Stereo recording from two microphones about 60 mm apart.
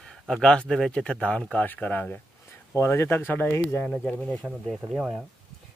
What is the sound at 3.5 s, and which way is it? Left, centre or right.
Speech, left.